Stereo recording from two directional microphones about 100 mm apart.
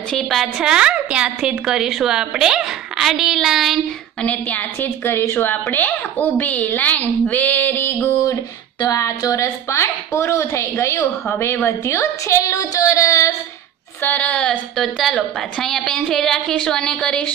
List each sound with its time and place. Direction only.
0.1 s a woman's voice: centre (ahead or behind)
4.2 s a woman's voice: 15° left (ahead or behind)
8.8 s a woman's voice: 35° left (ahead or behind)
14.0 s a woman's voice: 15° left (ahead or behind)